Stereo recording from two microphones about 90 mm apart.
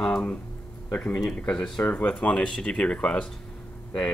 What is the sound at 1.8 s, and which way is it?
Speech, 20° left (ahead or behind).